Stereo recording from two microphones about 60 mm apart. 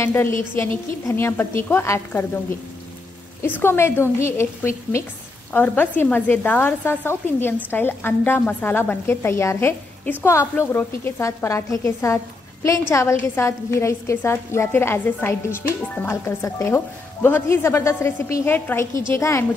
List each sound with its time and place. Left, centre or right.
0.0 s a woman's voice: left
3.4 s a woman's voice: left
5.5 s a woman's voice: left
11.1 s a woman's voice: left
16.4 s a woman's voice: left
17.2 s a woman's voice: left
18.5 s a woman's voice: left
18.9 s a woman's voice: left